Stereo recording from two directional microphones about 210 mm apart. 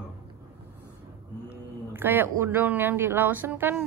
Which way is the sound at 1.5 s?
10° right (ahead or behind).